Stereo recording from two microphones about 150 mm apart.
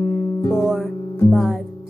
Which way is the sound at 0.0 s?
35° left (ahead or behind).